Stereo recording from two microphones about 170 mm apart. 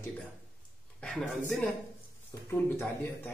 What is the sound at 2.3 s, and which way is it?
Speech, 15° left (ahead or behind).